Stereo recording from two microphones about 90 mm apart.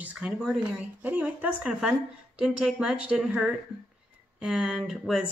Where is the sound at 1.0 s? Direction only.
15° right (ahead or behind).